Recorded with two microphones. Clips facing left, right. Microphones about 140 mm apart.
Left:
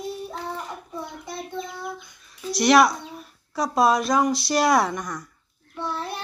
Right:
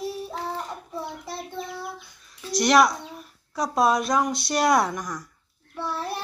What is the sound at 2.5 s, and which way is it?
Speech, 5° left (ahead or behind).